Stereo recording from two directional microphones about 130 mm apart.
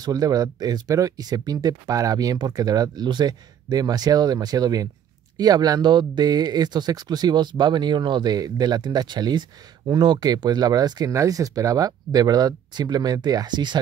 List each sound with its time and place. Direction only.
0.0 s speech: 30° right (ahead or behind)